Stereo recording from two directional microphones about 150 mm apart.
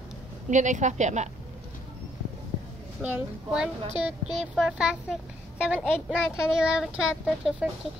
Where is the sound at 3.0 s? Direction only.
10° right (ahead or behind).